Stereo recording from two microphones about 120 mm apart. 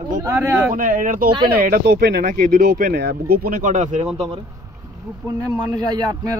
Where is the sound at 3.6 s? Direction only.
90° right.